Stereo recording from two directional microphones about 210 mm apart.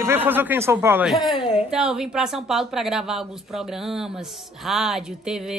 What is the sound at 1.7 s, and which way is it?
Speech, 5° right (ahead or behind).